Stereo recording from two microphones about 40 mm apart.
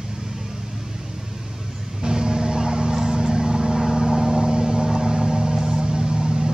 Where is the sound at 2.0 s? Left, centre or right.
Centre.